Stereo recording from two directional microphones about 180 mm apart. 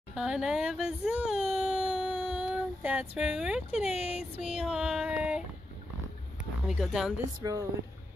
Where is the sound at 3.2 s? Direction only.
5° right (ahead or behind).